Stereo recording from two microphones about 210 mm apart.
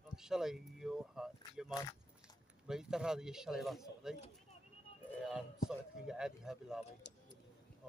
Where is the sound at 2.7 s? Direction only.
5° right (ahead or behind).